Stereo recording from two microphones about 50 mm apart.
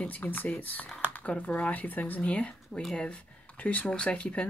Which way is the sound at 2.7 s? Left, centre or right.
Centre.